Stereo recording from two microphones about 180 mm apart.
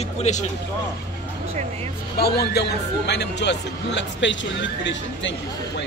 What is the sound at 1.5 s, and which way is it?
Speech, 35° right (ahead or behind).